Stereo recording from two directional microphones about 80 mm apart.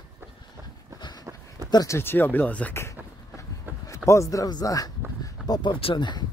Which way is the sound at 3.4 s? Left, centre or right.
Left.